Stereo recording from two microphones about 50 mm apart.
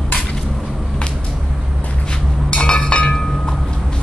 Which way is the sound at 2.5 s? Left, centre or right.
Centre.